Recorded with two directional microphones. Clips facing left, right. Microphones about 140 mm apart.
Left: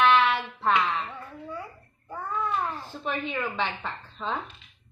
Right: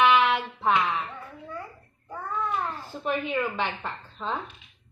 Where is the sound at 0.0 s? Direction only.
15° right (ahead or behind).